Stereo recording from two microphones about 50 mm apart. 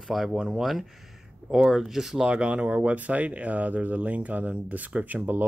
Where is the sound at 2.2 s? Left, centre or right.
Right.